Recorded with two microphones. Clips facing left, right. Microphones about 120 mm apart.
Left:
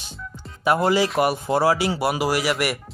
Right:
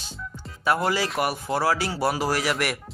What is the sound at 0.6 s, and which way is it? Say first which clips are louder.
Speech: left 4 dB; 20° left (ahead or behind).